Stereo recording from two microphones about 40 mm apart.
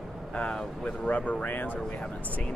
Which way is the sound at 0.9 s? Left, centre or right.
Left.